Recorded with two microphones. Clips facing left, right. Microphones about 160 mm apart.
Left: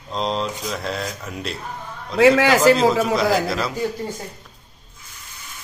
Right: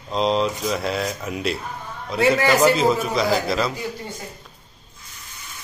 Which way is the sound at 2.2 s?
90° left.